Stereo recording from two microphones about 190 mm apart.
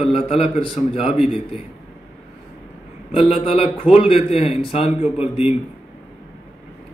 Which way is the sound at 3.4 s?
30° left (ahead or behind).